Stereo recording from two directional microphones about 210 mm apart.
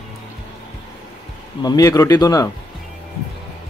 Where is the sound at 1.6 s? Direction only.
15° left (ahead or behind).